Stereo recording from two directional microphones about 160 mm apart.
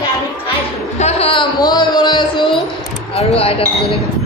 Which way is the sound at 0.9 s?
40° left (ahead or behind).